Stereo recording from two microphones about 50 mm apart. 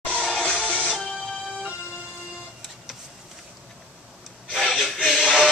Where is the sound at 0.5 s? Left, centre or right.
Left.